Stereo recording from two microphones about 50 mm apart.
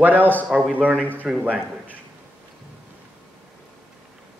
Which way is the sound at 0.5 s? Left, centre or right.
Right.